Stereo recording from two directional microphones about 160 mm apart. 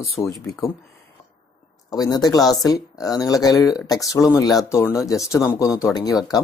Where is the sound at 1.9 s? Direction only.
25° left (ahead or behind).